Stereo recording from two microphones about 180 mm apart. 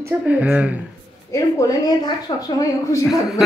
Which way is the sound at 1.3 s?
15° left (ahead or behind).